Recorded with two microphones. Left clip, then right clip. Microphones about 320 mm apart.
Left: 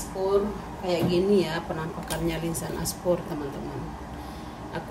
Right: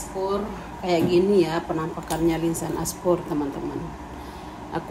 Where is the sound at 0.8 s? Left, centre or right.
Right.